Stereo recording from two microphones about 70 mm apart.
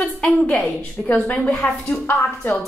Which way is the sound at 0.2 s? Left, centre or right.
Centre.